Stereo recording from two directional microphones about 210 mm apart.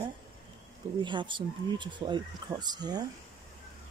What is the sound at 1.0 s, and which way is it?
Speech, 20° right (ahead or behind).